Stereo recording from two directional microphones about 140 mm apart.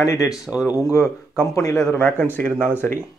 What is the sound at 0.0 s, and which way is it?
Speech, 20° left (ahead or behind).